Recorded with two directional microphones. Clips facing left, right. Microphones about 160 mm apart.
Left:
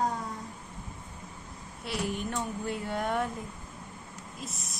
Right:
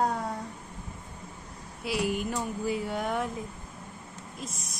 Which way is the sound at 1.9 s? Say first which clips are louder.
Right 4 dB; 5° right (ahead or behind).